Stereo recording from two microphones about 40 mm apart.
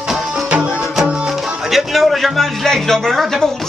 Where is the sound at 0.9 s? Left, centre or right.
Centre.